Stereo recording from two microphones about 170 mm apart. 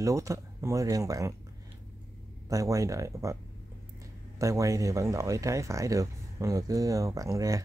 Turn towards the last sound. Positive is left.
turn(degrees=-20)  # may be behind; listen again after turning